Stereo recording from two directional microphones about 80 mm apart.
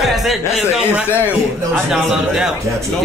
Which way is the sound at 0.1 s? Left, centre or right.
Centre.